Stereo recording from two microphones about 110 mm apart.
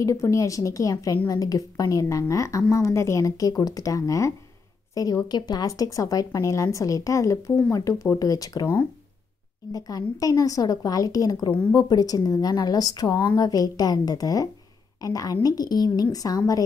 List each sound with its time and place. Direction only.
0.0 s a woman's voice: 30° left (ahead or behind)